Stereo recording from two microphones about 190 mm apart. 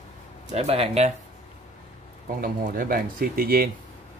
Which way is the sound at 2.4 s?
50° right (ahead or behind).